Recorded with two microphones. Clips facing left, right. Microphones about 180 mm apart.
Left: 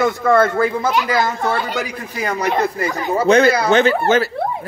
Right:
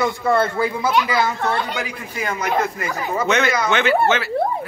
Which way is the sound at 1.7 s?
40° left (ahead or behind).